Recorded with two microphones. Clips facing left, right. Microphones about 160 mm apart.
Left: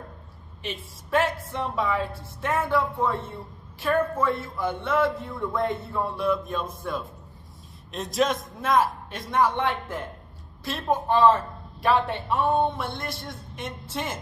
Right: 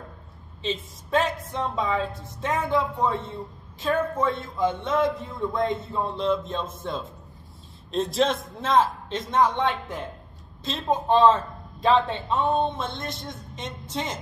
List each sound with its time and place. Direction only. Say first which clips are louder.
0.6 s a man's voice: right 5 dB; 20° right (ahead or behind)
4.4 s a man's voice: right 4 dB; 20° right (ahead or behind)